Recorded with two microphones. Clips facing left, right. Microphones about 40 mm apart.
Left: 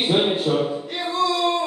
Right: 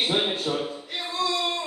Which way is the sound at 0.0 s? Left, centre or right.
Centre.